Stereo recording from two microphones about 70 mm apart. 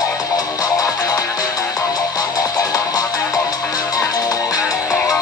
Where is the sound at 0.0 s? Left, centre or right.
Left.